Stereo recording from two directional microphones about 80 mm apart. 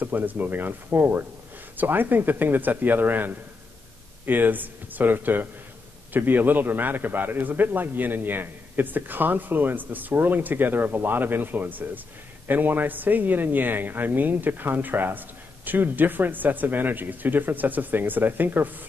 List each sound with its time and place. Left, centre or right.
0.0 s speech: right